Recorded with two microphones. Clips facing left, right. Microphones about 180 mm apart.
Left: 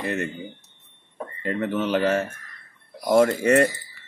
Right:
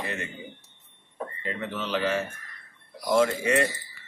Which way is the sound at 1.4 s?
50° left (ahead or behind).